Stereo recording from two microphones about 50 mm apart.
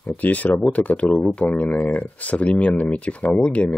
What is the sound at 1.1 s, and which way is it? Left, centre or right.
Speech, centre.